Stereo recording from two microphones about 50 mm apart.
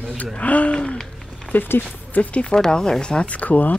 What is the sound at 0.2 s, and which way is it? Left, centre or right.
Speech, left.